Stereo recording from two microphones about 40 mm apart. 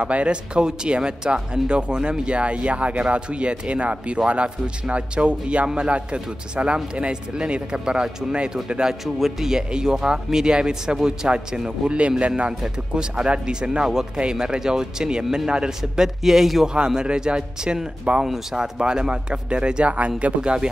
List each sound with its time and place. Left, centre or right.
0.0 s a man's voice: right
9.0 s speech: centre
15.8 s speech: centre
16.6 s speech: centre
18.2 s speech: centre; by 20.1 s right
20.4 s speech: right